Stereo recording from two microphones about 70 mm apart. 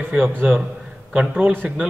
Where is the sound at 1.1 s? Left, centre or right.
Centre.